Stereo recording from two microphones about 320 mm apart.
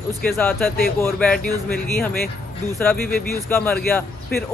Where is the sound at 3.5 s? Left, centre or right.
Centre.